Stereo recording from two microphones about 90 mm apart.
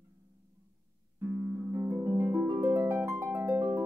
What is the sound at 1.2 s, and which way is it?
Harp, 25° right (ahead or behind).